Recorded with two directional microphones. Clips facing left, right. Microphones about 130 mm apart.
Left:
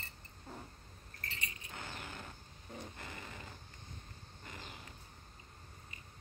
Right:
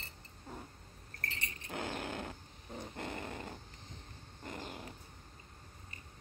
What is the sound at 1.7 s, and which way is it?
Fart, 65° right (ahead or behind).